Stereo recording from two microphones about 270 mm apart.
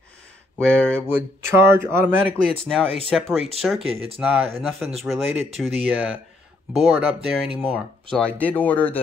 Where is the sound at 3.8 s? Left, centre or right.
Right.